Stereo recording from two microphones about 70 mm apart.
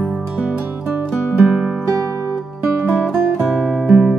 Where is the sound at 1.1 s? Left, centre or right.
Centre.